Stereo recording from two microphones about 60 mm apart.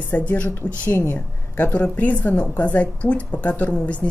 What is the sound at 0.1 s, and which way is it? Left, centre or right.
A woman's voice, left.